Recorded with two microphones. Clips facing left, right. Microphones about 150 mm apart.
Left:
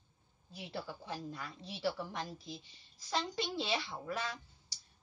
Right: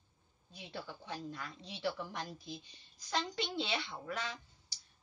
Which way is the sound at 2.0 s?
25° left (ahead or behind).